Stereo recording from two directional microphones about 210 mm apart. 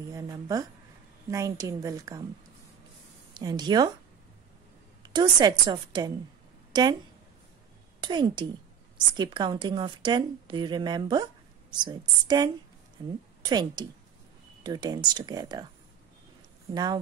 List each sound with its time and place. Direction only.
0.1 s a woman's voice: 15° right (ahead or behind)
3.3 s a woman's voice: 20° right (ahead or behind)
5.0 s a woman's voice: 20° right (ahead or behind)
8.0 s a woman's voice: 20° right (ahead or behind)
16.7 s a woman's voice: 20° right (ahead or behind)